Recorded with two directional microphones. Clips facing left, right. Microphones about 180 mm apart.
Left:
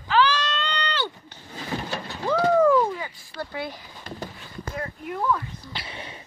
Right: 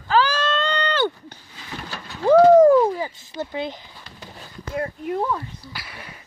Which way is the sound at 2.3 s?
40° right (ahead or behind).